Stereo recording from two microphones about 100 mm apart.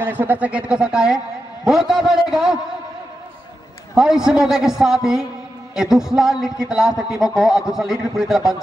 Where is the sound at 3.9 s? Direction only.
5° right (ahead or behind).